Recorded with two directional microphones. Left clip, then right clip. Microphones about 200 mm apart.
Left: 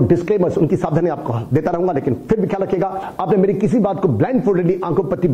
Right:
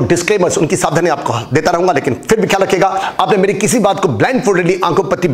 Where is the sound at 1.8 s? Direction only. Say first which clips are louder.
Right 6 dB; 10° right (ahead or behind).